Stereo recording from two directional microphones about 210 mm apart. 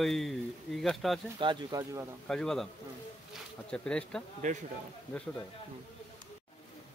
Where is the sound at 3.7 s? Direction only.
5° left (ahead or behind).